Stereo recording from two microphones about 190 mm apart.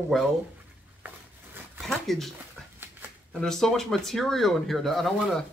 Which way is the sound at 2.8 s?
10° right (ahead or behind).